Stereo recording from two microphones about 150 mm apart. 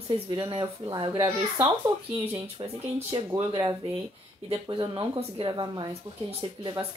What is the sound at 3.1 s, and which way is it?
Speech, 20° right (ahead or behind).